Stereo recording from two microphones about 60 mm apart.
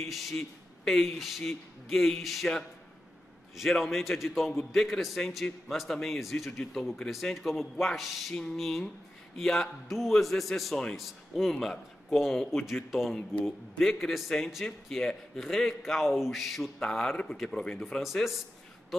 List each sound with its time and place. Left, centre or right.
0.1 s a man's voice: centre
3.7 s a man's voice: centre
11.5 s a man's voice: centre
18.0 s a man's voice: centre